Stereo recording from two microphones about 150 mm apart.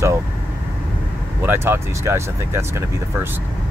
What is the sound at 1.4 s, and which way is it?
Speech, 15° right (ahead or behind).